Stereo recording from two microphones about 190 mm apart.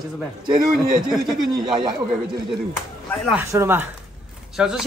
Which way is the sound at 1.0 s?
Centre (ahead or behind).